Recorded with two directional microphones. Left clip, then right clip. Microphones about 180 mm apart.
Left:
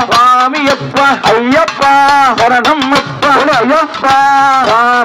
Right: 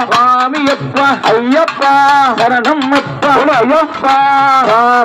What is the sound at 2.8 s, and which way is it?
Music, 20° left (ahead or behind).